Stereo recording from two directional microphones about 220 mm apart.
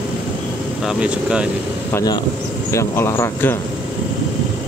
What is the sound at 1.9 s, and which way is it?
Speech, 15° left (ahead or behind).